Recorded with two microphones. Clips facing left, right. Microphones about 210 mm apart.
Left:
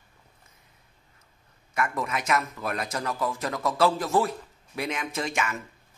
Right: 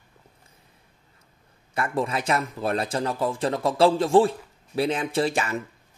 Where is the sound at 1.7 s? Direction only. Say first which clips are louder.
Right 3 dB; 30° right (ahead or behind).